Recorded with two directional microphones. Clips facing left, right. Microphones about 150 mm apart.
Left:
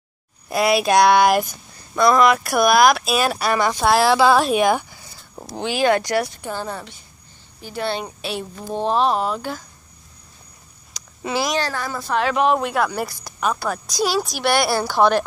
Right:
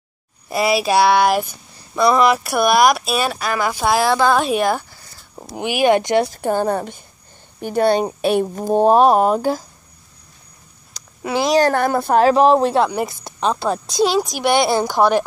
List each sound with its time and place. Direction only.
0.5 s speech: centre (ahead or behind)
5.6 s speech: 15° right (ahead or behind)
6.3 s speech: 50° right (ahead or behind)
11.6 s speech: 55° right (ahead or behind)
12.2 s a woman's voice: 35° right (ahead or behind); by 15.2 s 10° right (ahead or behind)